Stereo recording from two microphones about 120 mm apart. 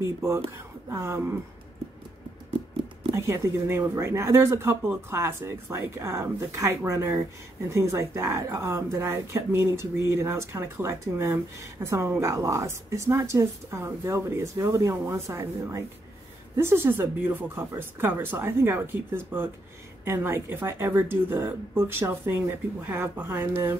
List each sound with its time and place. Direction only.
0.0 s speech: 20° right (ahead or behind)
3.2 s speech: 25° right (ahead or behind)